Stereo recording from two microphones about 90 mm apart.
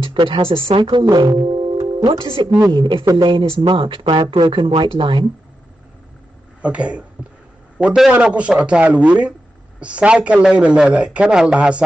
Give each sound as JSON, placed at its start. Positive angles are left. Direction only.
{"t": 0.0, "sound": "speech", "side_deg": -70}
{"t": 1.1, "sound": "speech", "side_deg": -55}
{"t": 2.0, "sound": "speech", "side_deg": -85}
{"t": 6.6, "sound": "a man's voice", "side_deg": -15}